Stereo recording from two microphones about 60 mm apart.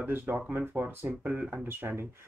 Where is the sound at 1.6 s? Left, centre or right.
Right.